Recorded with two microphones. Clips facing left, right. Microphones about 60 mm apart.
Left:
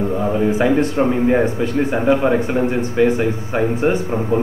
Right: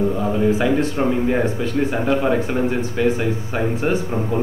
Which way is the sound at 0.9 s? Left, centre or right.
Centre.